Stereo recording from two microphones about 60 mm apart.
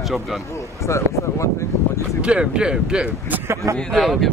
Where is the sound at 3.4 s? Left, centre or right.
Right.